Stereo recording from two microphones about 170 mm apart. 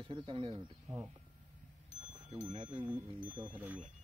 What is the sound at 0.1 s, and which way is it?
Speech, 35° right (ahead or behind).